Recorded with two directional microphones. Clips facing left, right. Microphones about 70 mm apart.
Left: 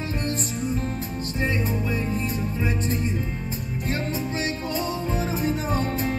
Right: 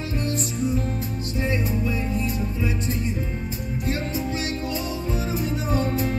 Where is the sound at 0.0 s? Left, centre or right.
Left.